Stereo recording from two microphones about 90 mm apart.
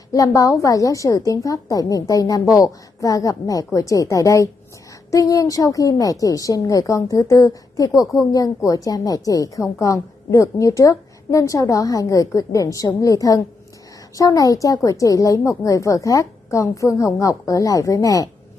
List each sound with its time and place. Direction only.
0.1 s a woman's voice: 40° left (ahead or behind)